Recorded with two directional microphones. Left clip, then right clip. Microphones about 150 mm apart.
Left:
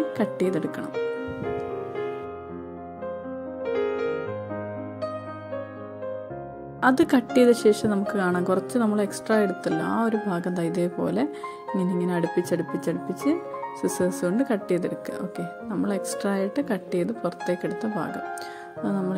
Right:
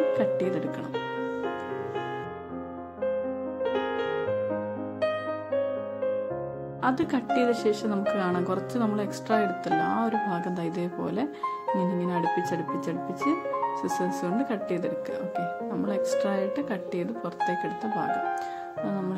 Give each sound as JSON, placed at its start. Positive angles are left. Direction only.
{"t": 0.2, "sound": "speech", "side_deg": 30}
{"t": 0.9, "sound": "music", "side_deg": 0}
{"t": 3.6, "sound": "music", "side_deg": 0}
{"t": 6.8, "sound": "speech", "side_deg": 35}
{"t": 12.4, "sound": "speech", "side_deg": 30}